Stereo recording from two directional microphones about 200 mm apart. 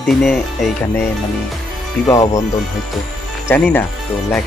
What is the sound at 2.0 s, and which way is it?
Speech, 15° left (ahead or behind).